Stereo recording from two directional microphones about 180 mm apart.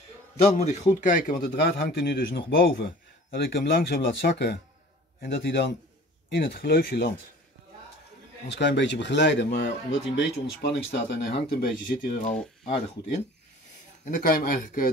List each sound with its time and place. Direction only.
0.6 s a man's voice: 40° left (ahead or behind); by 7.1 s 65° left (ahead or behind)
8.5 s speech: 75° left (ahead or behind)
10.6 s a man's voice: 65° left (ahead or behind)
14.0 s speech: 50° left (ahead or behind)